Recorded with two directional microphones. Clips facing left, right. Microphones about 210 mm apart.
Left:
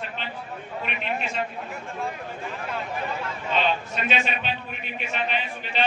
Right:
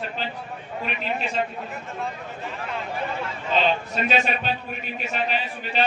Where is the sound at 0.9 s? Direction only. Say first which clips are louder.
Right 2 dB; 35° right (ahead or behind).